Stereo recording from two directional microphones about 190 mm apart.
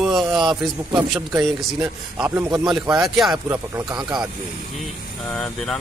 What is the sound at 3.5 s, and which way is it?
Speech, 15° right (ahead or behind).